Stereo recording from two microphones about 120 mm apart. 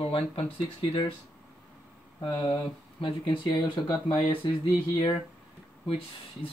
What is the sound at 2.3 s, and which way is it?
Speech, 35° left (ahead or behind).